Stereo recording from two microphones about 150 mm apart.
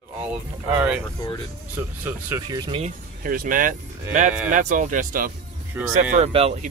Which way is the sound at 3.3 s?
70° right (ahead or behind).